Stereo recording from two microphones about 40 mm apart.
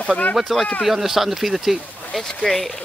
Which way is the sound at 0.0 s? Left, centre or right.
Left.